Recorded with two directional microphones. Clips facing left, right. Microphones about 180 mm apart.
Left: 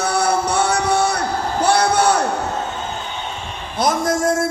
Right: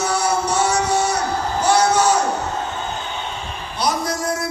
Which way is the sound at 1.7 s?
60° left (ahead or behind).